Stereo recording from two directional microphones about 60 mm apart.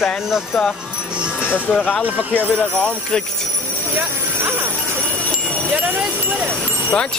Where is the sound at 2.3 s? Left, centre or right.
Left.